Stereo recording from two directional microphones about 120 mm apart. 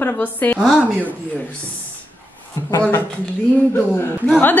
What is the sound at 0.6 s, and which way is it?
Speech, 5° right (ahead or behind).